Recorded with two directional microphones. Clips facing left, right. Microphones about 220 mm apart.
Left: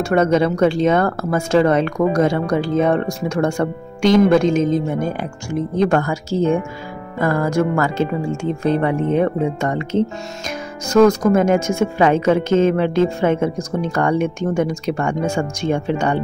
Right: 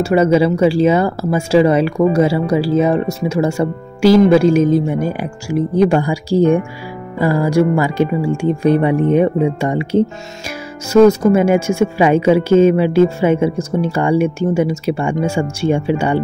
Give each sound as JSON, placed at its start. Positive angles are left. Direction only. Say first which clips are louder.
{"t": 0.0, "sound": "speech", "louder": "right 3 dB", "side_deg": -10}